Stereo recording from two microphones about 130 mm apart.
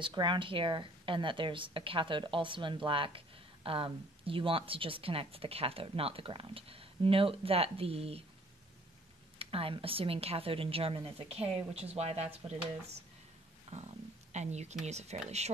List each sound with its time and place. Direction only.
0.0 s a woman's voice: 35° right (ahead or behind)
9.4 s a woman's voice: 45° right (ahead or behind)
14.3 s speech: 60° right (ahead or behind)